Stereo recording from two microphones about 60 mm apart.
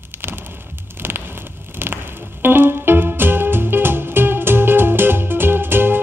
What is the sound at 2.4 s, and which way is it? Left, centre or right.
Music, right.